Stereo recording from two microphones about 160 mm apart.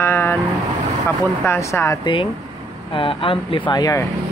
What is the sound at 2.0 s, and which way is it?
Speech, 30° left (ahead or behind).